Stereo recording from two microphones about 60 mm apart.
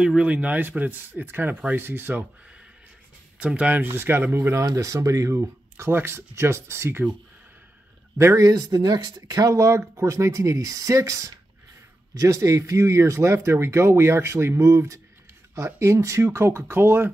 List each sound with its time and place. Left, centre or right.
0.0 s speech: centre; by 2.2 s right
3.3 s speech: right
3.8 s speech: right
4.6 s speech: right
5.9 s speech: right
8.4 s speech: right